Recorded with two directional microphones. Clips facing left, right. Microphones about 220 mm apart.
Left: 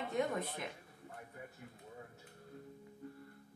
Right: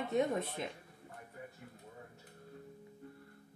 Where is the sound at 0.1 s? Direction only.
25° right (ahead or behind).